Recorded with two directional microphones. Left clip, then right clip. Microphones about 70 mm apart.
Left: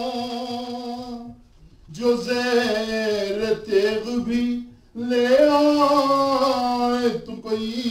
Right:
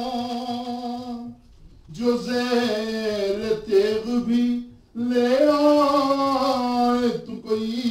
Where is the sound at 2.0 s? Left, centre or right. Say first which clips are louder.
Left 2 dB; left.